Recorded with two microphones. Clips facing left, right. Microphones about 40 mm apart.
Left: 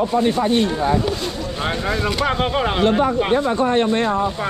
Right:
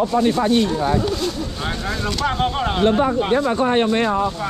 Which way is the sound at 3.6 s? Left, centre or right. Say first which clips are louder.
Even; right.